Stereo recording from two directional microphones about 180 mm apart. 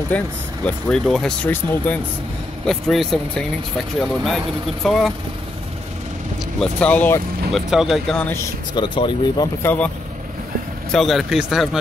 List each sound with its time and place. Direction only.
0.1 s speech: 10° left (ahead or behind)
4.8 s speech: centre (ahead or behind)
6.6 s speech: 5° left (ahead or behind)
8.7 s speech: 25° left (ahead or behind)
9.6 s speech: 10° left (ahead or behind)
10.9 s speech: centre (ahead or behind)